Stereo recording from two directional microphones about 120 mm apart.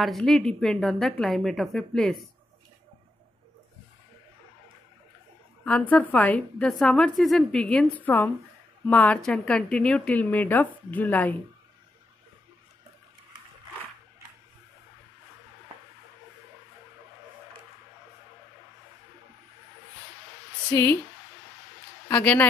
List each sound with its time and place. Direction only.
0.0 s a woman's voice: 5° left (ahead or behind)
5.6 s a woman's voice: 10° left (ahead or behind)
20.7 s a woman's voice: 20° left (ahead or behind)
22.1 s a woman's voice: 15° left (ahead or behind)